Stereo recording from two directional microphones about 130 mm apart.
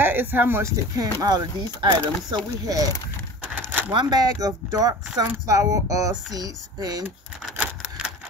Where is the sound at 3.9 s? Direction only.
30° right (ahead or behind).